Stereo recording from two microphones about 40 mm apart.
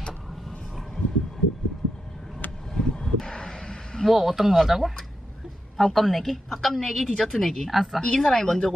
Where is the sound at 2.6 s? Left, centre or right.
Centre.